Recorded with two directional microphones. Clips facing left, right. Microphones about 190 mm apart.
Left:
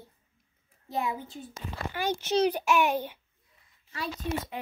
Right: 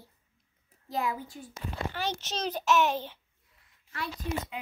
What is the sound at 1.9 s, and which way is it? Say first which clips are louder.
A child's voice: left 8 dB; 10° left (ahead or behind).